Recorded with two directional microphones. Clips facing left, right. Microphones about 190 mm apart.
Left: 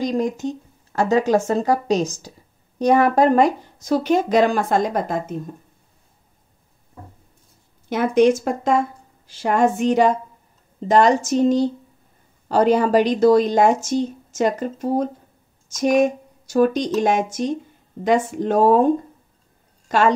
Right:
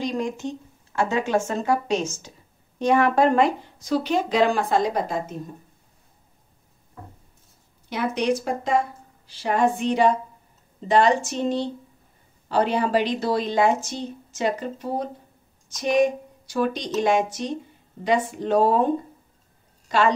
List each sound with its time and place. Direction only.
0.0 s a woman's voice: 40° left (ahead or behind)
7.9 s speech: 50° left (ahead or behind)
19.9 s speech: 45° left (ahead or behind)